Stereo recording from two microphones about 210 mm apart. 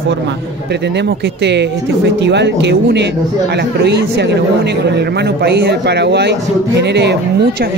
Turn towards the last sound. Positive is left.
turn(degrees=-50)  # may be behind; listen again after turning